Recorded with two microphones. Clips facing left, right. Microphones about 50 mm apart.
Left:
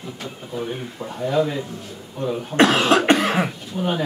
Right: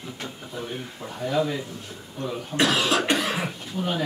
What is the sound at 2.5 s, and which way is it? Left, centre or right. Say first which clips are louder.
Cough: left 6 dB; left.